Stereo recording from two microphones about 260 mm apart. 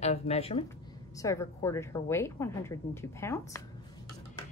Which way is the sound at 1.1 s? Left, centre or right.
Centre.